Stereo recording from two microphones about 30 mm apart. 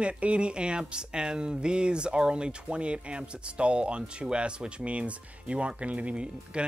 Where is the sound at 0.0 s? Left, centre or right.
Right.